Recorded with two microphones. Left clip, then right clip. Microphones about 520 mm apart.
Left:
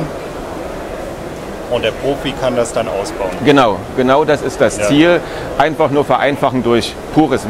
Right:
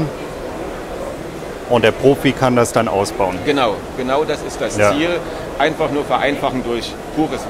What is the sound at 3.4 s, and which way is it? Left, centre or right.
Speech, left.